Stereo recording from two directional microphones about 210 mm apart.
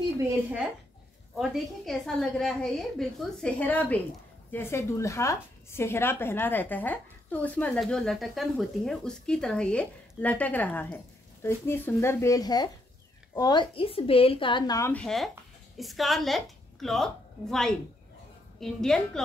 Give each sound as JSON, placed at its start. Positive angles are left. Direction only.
{"t": 0.2, "sound": "a woman's voice", "side_deg": -5}